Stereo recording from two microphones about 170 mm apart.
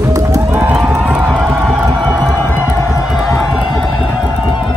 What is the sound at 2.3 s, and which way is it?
Music, 10° left (ahead or behind).